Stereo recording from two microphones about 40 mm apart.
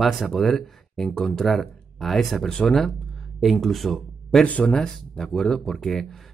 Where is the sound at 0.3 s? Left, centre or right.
Centre.